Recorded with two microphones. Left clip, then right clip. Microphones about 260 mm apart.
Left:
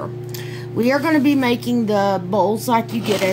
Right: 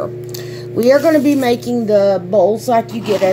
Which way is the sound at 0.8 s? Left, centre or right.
Centre.